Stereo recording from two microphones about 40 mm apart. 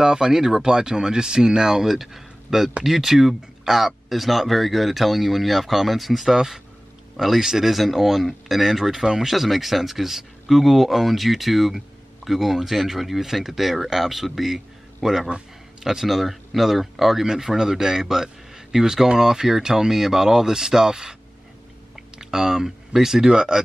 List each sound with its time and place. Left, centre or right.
0.0 s speech: centre
22.2 s speech: centre